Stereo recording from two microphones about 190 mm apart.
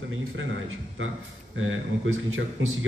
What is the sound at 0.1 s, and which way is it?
Speech, 90° right.